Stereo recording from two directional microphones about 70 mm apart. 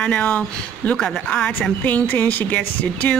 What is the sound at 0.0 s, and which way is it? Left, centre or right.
Speech, left.